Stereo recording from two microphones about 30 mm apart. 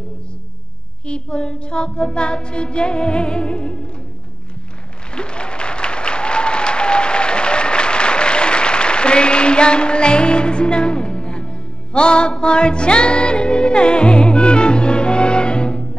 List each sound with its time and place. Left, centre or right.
1.0 s child singing: left
5.1 s applause: left